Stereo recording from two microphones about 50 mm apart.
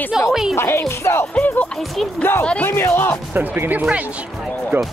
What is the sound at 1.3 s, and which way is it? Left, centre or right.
Speech, left.